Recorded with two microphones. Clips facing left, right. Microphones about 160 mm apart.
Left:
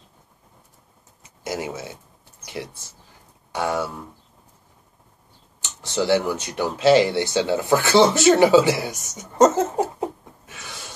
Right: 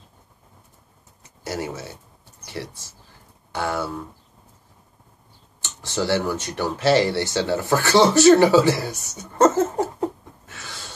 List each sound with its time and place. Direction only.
1.2 s a sound: 15° left (ahead or behind)
3.5 s speech: 15° left (ahead or behind)
5.6 s speech: 15° left (ahead or behind)